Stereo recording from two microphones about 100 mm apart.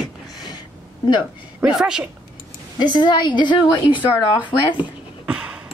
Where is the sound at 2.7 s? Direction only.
50° left (ahead or behind).